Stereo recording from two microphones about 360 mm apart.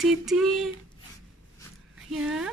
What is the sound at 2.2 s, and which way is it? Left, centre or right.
Speech, centre.